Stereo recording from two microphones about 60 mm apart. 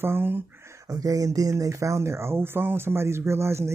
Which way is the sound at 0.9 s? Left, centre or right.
Right.